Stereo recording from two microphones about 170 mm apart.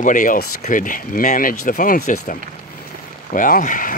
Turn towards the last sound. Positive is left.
turn(degrees=50)  # may be behind; listen again after turning